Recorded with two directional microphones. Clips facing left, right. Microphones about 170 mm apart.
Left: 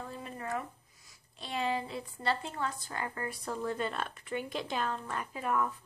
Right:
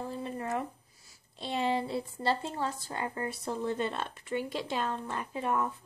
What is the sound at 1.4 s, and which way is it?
A woman's voice, 25° right (ahead or behind).